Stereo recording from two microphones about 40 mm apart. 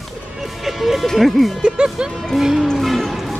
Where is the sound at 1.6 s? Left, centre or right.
Right.